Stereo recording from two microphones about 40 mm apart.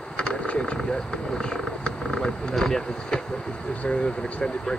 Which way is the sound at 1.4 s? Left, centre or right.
Centre.